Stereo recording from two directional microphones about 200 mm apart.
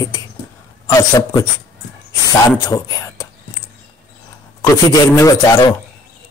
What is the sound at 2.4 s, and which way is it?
Speech, 15° left (ahead or behind).